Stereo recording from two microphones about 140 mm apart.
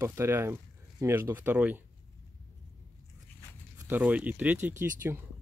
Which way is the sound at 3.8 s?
10° right (ahead or behind).